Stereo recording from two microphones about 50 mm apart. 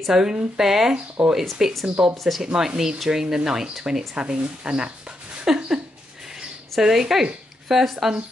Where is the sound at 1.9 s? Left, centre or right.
Centre.